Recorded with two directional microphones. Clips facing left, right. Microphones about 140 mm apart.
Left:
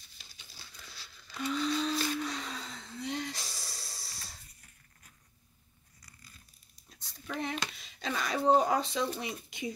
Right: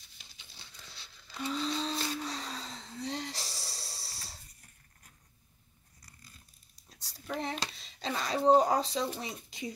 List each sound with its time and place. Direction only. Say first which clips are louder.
0.2 s a sound: left 1 dB; 20° right (ahead or behind)
7.3 s hands: even; 35° right (ahead or behind)
8.5 s speech: right 1 dB; 35° right (ahead or behind)